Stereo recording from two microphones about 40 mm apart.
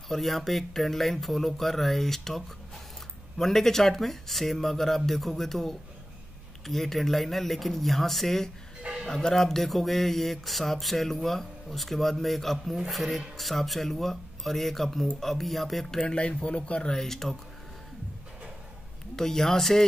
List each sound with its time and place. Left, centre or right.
0.1 s speech: centre
16.0 s speech: left
16.9 s speech: centre
19.1 s speech: centre